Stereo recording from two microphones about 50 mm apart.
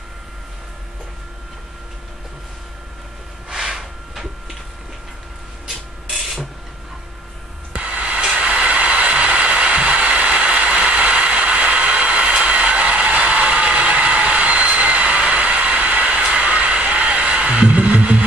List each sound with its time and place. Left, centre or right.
3.4 s a sound: centre
7.7 s music: right
8.2 s vehicle: right